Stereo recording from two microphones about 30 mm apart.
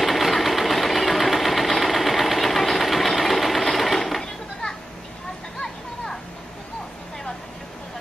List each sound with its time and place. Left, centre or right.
0.0 s sewing machine: centre